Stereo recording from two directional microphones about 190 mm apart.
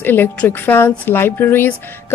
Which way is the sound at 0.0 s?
10° left (ahead or behind).